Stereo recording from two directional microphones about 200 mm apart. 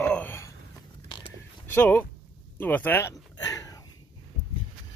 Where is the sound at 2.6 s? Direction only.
10° left (ahead or behind).